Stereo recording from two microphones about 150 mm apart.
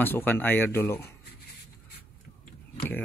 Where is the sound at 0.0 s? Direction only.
15° left (ahead or behind).